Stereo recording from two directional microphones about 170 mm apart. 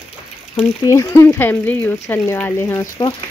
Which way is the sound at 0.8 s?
15° left (ahead or behind).